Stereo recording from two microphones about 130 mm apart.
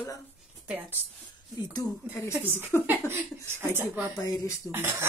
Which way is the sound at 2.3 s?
15° right (ahead or behind).